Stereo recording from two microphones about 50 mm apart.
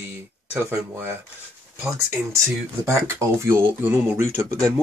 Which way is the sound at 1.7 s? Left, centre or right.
Right.